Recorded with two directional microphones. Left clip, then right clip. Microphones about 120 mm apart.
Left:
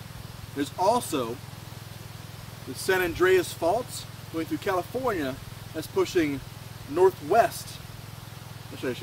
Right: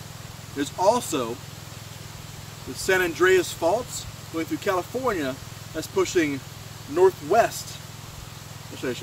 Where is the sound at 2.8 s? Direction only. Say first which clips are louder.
Right 3 dB; 15° right (ahead or behind).